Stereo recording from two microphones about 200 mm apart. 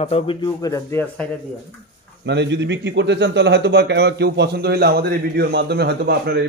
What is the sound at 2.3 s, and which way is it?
A man's voice, 60° right (ahead or behind).